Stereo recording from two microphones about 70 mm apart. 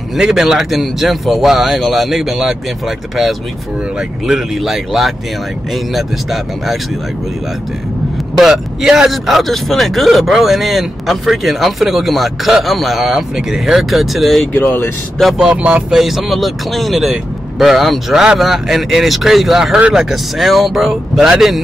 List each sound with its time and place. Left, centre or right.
0.2 s speech: centre
4.3 s speech: centre
8.4 s speech: centre
14.5 s speech: left
15.3 s speech: centre
16.0 s speech: centre